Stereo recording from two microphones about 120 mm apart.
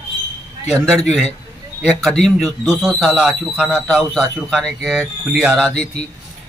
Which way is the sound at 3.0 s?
Centre (ahead or behind).